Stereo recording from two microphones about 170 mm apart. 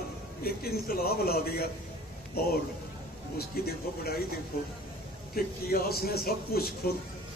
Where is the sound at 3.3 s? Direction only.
65° left (ahead or behind).